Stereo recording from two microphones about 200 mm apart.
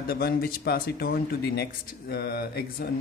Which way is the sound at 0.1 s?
50° left (ahead or behind).